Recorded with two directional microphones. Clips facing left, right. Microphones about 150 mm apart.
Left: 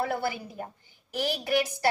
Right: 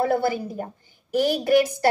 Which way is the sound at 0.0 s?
40° right (ahead or behind).